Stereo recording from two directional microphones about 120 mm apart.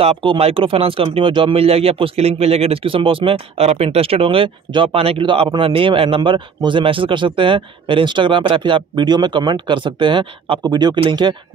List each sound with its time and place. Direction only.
0.0 s speech: 50° right (ahead or behind)